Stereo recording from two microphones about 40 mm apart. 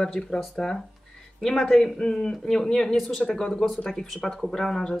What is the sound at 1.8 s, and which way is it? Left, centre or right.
Speech, centre.